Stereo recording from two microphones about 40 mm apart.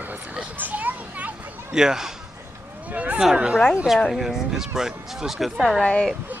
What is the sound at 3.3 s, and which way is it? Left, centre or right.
Speech, right.